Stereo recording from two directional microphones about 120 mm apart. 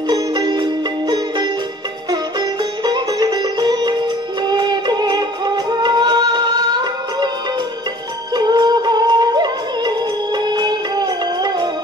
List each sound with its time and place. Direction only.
0.1 s music: 35° right (ahead or behind)
2.8 s music: 35° right (ahead or behind)
8.5 s music: 35° right (ahead or behind)